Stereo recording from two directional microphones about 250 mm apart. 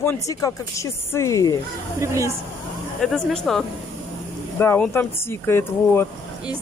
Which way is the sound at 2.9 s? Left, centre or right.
Centre.